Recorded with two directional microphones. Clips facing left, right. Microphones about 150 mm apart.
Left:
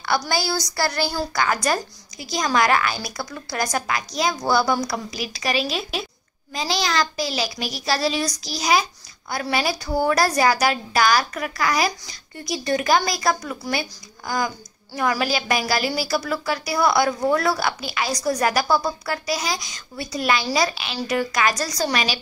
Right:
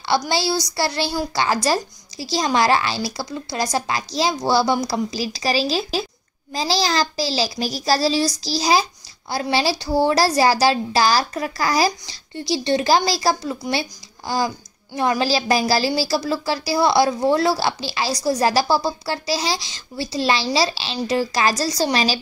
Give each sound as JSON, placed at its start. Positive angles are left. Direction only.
{"t": 0.3, "sound": "a woman's voice", "side_deg": -25}